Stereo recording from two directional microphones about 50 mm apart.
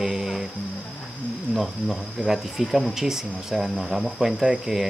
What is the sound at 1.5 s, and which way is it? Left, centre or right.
Speech, centre.